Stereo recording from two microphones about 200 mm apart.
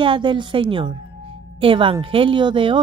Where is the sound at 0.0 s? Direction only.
25° right (ahead or behind).